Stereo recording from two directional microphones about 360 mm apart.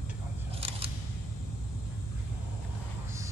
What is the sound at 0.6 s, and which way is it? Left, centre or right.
Single-lens reflex camera, centre.